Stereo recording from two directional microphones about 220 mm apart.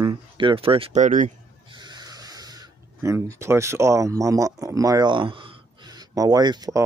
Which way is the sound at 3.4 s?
10° right (ahead or behind).